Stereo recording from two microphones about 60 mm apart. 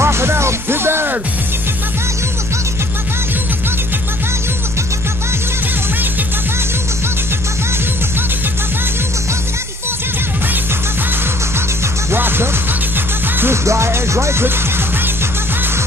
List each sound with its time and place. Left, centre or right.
0.0 s music: right
12.1 s music: right
13.7 s music: right